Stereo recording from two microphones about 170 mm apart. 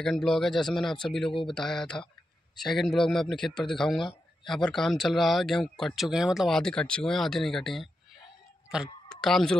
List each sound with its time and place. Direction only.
0.0 s speech: 5° left (ahead or behind)